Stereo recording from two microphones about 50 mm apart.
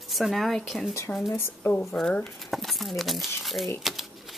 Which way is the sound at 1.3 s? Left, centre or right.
Left.